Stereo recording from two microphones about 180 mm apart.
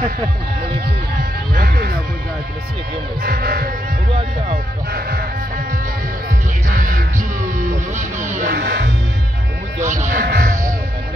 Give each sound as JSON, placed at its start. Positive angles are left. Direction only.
{"t": 1.5, "sound": "music", "side_deg": -55}
{"t": 3.2, "sound": "music", "side_deg": -55}
{"t": 6.7, "sound": "music", "side_deg": -50}
{"t": 8.5, "sound": "music", "side_deg": -65}
{"t": 9.8, "sound": "music", "side_deg": -45}